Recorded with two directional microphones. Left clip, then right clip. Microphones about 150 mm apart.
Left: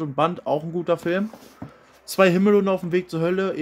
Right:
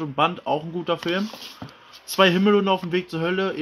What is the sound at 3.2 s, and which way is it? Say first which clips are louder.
Speech: even; 20° left (ahead or behind).